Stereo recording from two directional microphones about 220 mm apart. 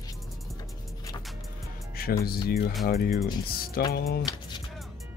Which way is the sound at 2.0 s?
45° left (ahead or behind).